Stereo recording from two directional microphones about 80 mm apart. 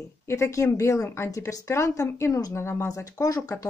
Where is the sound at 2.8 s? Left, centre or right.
Left.